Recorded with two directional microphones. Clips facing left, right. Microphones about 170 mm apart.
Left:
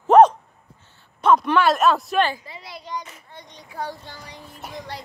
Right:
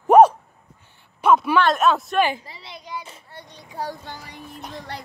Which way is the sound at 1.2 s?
5° right (ahead or behind).